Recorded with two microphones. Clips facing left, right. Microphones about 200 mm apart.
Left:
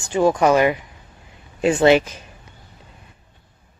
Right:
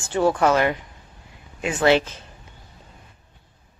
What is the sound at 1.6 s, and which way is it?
Speech, 30° left (ahead or behind).